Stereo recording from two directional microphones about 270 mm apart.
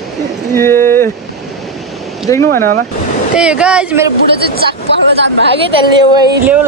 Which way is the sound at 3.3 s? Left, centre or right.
Centre.